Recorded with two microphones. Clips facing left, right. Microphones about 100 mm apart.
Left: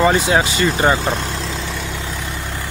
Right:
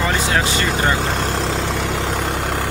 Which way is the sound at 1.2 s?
65° right (ahead or behind).